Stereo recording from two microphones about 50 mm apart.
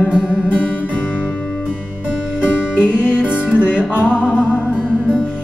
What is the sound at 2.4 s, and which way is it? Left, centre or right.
Music, right.